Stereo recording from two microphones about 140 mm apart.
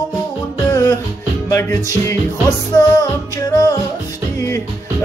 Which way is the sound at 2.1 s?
25° left (ahead or behind).